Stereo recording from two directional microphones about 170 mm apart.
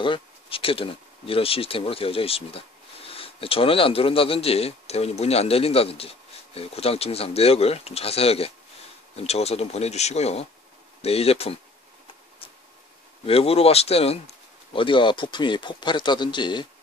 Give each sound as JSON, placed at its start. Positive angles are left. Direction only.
{"t": 0.0, "sound": "speech", "side_deg": 30}
{"t": 13.2, "sound": "speech", "side_deg": 35}